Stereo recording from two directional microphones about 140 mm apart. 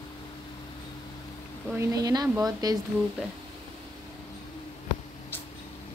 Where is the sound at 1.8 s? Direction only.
25° right (ahead or behind).